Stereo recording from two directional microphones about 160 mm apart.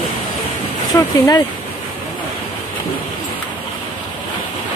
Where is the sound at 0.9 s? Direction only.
25° left (ahead or behind).